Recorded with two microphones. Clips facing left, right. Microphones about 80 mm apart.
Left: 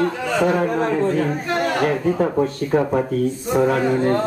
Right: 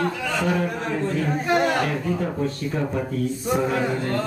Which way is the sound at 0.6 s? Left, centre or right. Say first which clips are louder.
Left 6 dB; left.